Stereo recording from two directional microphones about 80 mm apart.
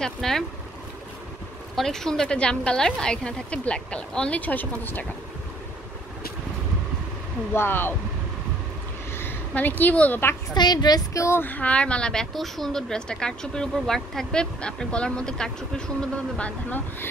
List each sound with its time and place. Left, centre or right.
0.0 s speech: centre
1.8 s a woman's voice: centre; by 5.0 s left
7.5 s speech: left
9.1 s a woman's voice: left
10.5 s a woman's voice: left
11.1 s speech: left
11.4 s a woman's voice: centre